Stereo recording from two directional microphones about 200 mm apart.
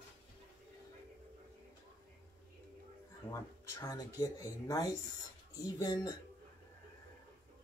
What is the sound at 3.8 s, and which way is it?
Mantra, 20° left (ahead or behind).